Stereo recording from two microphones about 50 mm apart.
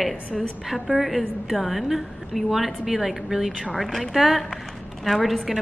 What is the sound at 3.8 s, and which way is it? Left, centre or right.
Speech, centre.